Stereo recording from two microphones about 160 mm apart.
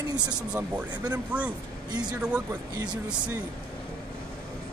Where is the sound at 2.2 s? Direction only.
5° right (ahead or behind).